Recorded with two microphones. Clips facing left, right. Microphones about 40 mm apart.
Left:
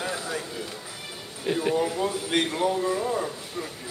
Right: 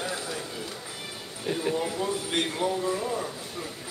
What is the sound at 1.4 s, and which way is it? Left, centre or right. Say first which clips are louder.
A man's voice: left 4 dB; centre.